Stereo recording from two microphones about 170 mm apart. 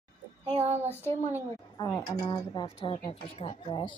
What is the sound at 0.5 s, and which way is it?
Child singing, 40° right (ahead or behind).